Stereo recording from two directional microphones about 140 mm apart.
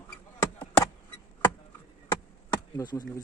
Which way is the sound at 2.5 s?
25° left (ahead or behind).